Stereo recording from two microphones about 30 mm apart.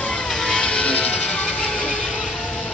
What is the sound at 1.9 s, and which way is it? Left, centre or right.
Vehicle, left.